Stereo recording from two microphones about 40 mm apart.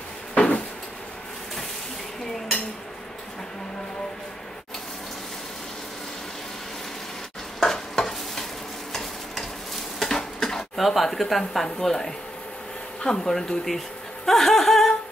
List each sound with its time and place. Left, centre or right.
0.3 s cupboard open or close: left
7.6 s stir: centre
9.9 s a sound: centre
13.0 s speech: centre